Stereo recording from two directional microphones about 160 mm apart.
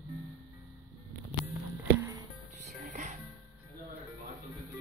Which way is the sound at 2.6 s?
50° right (ahead or behind).